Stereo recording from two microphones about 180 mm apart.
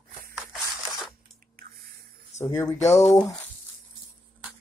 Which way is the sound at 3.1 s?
15° left (ahead or behind).